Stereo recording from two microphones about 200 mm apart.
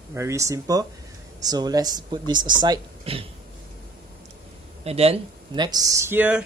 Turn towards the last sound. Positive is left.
turn(degrees=-10)  # may be behind; listen again after turning